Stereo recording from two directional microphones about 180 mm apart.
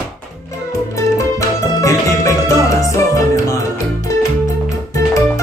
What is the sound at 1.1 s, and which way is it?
Music, 15° left (ahead or behind).